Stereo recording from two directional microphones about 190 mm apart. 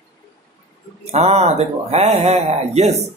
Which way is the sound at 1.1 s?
35° right (ahead or behind).